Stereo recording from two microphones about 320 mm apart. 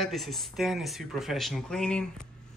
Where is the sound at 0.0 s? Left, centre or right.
Centre.